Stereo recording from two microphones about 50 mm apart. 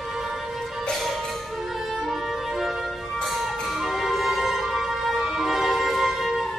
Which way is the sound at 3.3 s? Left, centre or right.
Centre.